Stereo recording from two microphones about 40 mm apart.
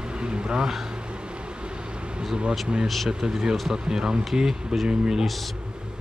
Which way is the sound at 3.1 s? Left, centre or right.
Centre.